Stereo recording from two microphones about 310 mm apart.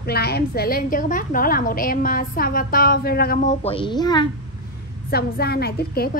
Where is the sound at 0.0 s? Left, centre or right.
Left; by 4.3 s centre.